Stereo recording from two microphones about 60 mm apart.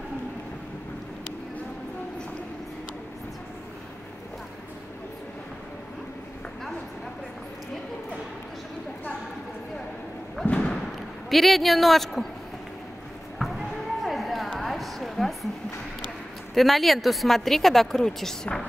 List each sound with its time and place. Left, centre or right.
10.4 s thump: centre
11.2 s speech: centre
13.4 s a sound: centre
16.5 s speech: centre